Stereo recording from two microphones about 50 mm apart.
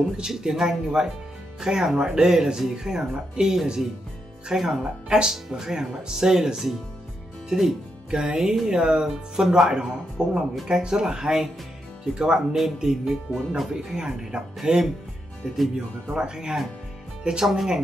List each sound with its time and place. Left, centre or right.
0.2 s speech: centre
17.5 s speech: centre